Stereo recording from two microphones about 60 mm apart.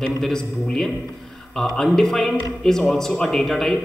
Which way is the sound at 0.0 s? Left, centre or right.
Centre.